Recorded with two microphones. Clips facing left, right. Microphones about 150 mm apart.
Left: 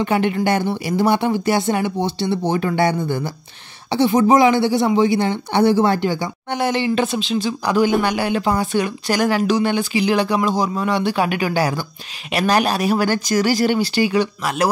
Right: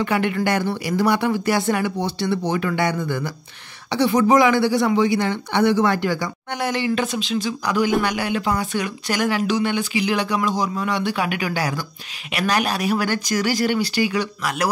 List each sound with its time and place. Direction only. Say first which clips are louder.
0.0 s speech: left 3 dB; 25° left (ahead or behind)